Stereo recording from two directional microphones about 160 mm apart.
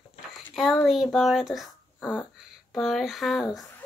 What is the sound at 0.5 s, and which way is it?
Speech, centre (ahead or behind).